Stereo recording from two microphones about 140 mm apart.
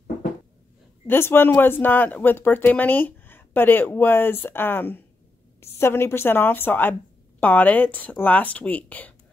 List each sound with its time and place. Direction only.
1.0 s speech: 15° left (ahead or behind)